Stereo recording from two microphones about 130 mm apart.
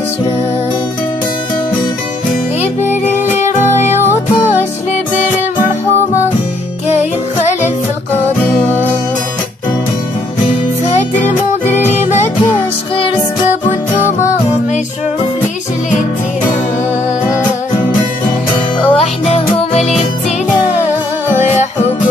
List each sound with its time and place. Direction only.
8.5 s music: 15° left (ahead or behind)
11.1 s music: 15° left (ahead or behind)
18.8 s music: 50° left (ahead or behind)